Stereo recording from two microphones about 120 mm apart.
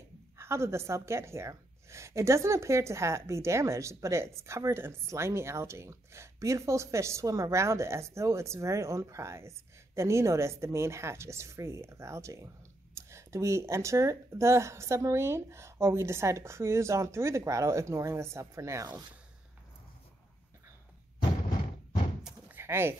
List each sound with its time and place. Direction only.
0.4 s a woman's voice: 20° right (ahead or behind)
22.5 s bird: 20° right (ahead or behind)